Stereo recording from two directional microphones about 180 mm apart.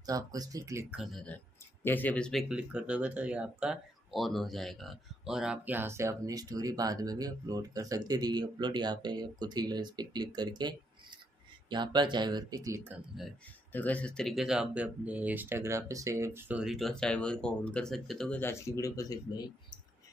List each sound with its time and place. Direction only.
0.0 s speech: 20° right (ahead or behind)
0.8 s speech: 5° right (ahead or behind)
2.5 s speech: 5° right (ahead or behind)
13.1 s speech: centre (ahead or behind)
13.7 s speech: 10° left (ahead or behind)